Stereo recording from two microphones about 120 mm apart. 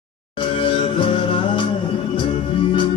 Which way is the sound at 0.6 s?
45° left (ahead or behind).